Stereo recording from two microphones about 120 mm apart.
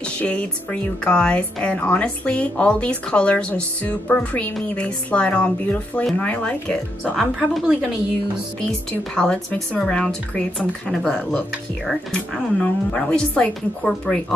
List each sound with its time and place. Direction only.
0.2 s a woman's voice: 10° left (ahead or behind)
7.3 s a woman's voice: 5° right (ahead or behind)
8.5 s a woman's voice: 10° left (ahead or behind)